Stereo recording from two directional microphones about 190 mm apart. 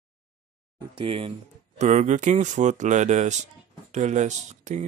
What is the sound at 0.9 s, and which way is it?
Speech, 30° right (ahead or behind).